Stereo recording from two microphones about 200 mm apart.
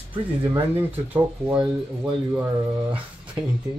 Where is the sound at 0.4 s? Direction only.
10° right (ahead or behind).